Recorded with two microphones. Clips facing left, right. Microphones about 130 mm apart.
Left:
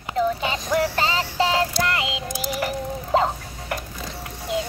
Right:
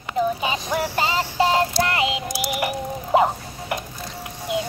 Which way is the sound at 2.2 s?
85° right.